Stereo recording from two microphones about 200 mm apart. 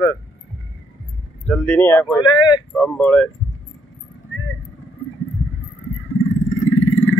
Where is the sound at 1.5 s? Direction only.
10° left (ahead or behind).